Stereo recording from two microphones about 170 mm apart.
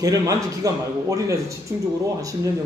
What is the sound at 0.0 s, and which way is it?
Speech, 20° right (ahead or behind).